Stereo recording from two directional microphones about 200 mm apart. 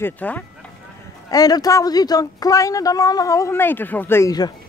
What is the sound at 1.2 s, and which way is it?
Speech, 20° left (ahead or behind).